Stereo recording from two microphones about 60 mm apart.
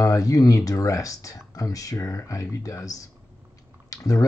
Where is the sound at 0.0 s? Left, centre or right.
Left.